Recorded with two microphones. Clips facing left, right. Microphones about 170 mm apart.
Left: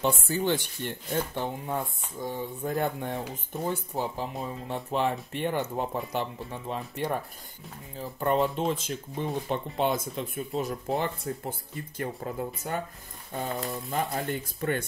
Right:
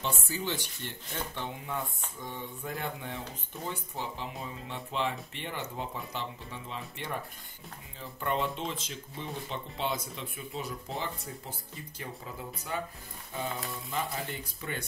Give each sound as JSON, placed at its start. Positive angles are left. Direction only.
{"t": 0.0, "sound": "speech", "side_deg": 55}
{"t": 8.0, "sound": "speech", "side_deg": 40}